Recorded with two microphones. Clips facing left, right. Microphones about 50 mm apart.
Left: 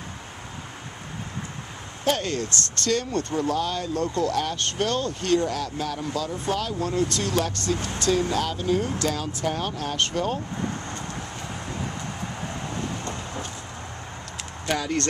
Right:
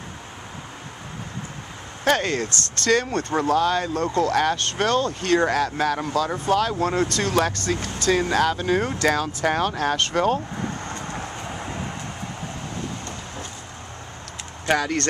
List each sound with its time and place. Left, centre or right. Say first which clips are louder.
2.0 s speech: right 4 dB; right
6.6 s speech: right 4 dB; right
8.1 s speech: right 4 dB; right
14.8 s speech: right 2 dB; right